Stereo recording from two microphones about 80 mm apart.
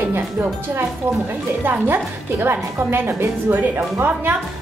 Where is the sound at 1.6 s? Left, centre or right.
Right.